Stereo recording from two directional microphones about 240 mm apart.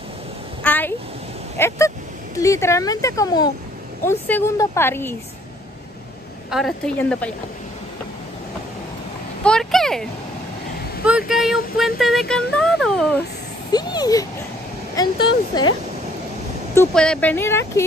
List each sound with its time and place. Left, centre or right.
0.7 s a sound: centre
1.6 s honk: centre
2.3 s speech: centre
6.5 s speech: centre
9.4 s speech: centre
11.1 s speech: centre
13.7 s speech: centre
16.7 s speech: centre